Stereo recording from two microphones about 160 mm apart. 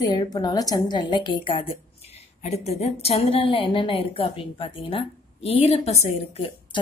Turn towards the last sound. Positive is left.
turn(degrees=40)  # may be behind; listen again after turning